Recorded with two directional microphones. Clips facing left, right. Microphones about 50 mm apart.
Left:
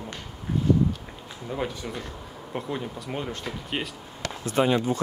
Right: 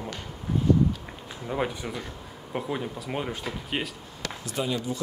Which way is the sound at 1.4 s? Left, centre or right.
Centre.